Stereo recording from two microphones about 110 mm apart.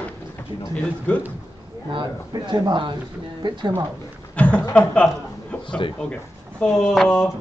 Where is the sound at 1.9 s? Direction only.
45° right (ahead or behind).